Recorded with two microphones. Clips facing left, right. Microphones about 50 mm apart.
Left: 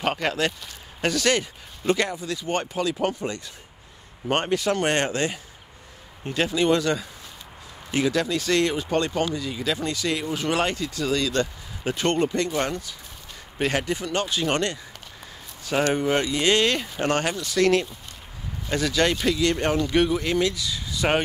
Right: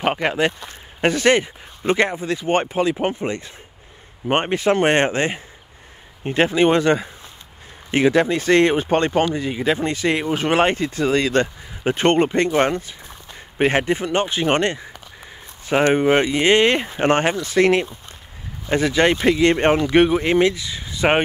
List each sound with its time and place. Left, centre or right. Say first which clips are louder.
0.0 s speech: right 5 dB; right